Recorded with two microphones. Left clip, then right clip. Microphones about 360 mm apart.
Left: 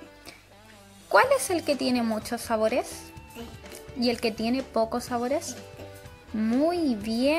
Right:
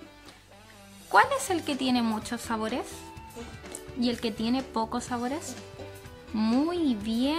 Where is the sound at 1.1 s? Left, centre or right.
Centre.